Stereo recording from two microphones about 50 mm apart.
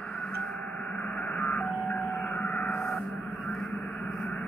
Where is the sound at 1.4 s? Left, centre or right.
Left.